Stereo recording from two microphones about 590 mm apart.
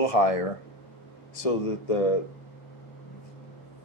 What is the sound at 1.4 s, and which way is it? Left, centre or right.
Speech, left.